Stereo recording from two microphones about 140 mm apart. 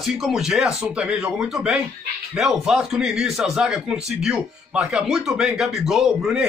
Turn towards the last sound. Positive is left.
turn(degrees=0)  # may be behind; listen again after turning